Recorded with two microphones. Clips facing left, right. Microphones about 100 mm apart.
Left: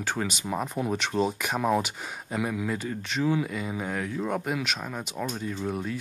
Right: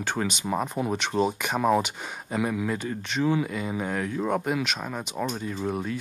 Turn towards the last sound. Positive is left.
turn(degrees=-5)  # may be behind; listen again after turning